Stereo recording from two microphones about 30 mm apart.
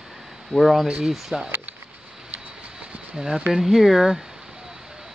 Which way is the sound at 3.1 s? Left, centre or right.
Right.